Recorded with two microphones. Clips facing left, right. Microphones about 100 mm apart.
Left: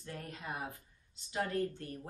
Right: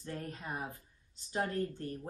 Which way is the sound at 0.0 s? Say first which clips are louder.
Right 3 dB; 35° right (ahead or behind).